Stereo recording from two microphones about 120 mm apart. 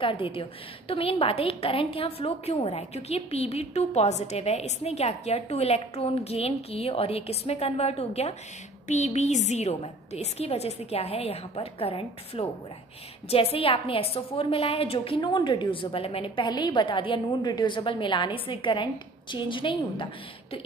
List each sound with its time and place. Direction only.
0.0 s a woman's voice: 50° left (ahead or behind)
8.8 s a woman's voice: 75° left (ahead or behind); by 20.1 s 45° left (ahead or behind)